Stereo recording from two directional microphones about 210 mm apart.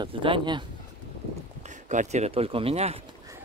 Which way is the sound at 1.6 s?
35° right (ahead or behind).